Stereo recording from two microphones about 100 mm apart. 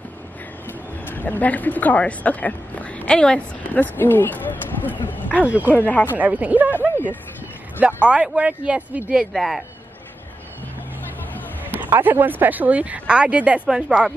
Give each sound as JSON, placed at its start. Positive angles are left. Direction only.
{"t": 0.7, "sound": "speech", "side_deg": 20}
{"t": 5.4, "sound": "speech", "side_deg": -15}
{"t": 5.8, "sound": "speech", "side_deg": 15}
{"t": 6.1, "sound": "speech", "side_deg": -15}
{"t": 7.8, "sound": "speech", "side_deg": -10}
{"t": 9.1, "sound": "speech", "side_deg": 0}
{"t": 11.7, "sound": "speech", "side_deg": -20}